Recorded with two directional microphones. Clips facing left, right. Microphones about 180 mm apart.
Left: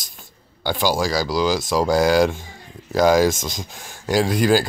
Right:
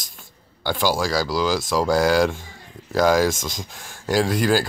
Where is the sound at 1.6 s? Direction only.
20° left (ahead or behind).